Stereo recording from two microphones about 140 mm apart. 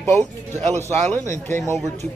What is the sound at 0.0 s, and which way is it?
Speech, 15° left (ahead or behind).